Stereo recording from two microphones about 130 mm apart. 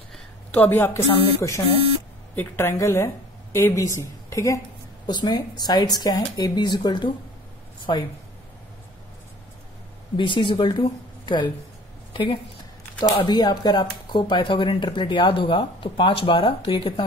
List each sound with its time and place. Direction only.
0.5 s a woman's voice: 15° left (ahead or behind); by 8.1 s 35° left (ahead or behind)
10.1 s speech: 40° left (ahead or behind)